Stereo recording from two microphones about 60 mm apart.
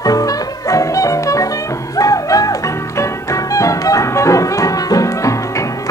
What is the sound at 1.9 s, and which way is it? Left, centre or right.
Music, left.